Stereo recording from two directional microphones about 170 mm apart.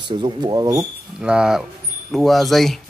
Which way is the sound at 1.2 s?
5° right (ahead or behind).